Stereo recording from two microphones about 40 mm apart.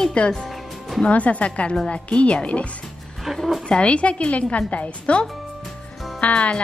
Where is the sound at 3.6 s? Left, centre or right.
Left.